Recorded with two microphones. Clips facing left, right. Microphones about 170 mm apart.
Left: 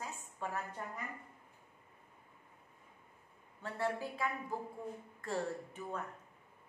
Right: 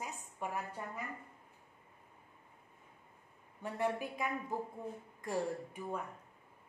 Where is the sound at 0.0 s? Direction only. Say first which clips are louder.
Right 1 dB; 15° right (ahead or behind).